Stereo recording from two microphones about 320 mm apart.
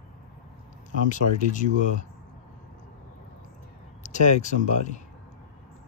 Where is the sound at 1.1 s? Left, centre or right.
Left.